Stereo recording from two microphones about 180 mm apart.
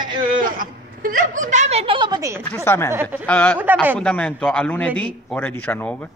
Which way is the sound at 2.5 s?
15° left (ahead or behind).